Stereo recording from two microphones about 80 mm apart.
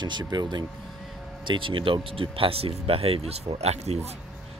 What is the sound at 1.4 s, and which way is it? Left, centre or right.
Speech, right.